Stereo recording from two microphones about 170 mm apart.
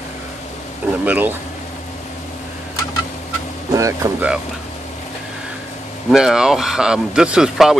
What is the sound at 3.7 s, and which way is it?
Speech, 20° right (ahead or behind).